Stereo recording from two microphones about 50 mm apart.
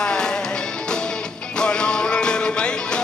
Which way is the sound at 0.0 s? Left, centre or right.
Centre.